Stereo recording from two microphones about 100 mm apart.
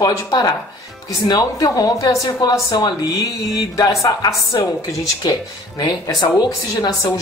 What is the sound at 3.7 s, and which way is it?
Speech, 40° left (ahead or behind).